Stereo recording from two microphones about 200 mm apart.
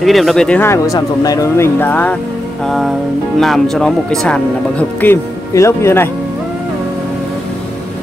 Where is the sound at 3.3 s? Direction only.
Centre (ahead or behind).